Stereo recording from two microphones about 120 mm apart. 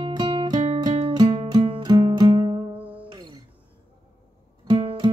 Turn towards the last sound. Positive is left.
turn(degrees=-45)  # may be behind; listen again after turning